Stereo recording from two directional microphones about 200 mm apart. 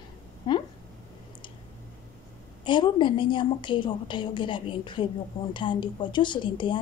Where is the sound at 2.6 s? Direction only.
25° left (ahead or behind).